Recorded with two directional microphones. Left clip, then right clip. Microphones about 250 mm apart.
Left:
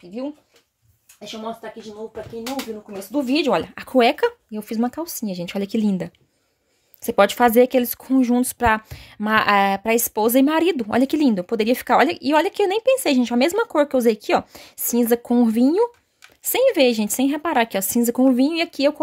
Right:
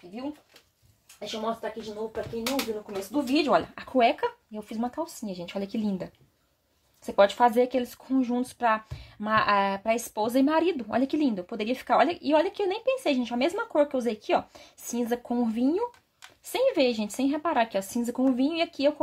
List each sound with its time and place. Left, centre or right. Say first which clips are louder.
3.1 s speech: left 4 dB; left